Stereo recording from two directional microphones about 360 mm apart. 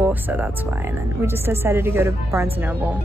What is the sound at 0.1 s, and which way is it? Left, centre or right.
A woman's voice, centre.